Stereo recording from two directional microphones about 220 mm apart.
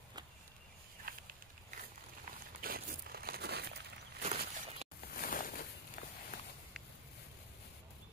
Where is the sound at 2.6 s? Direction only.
40° right (ahead or behind).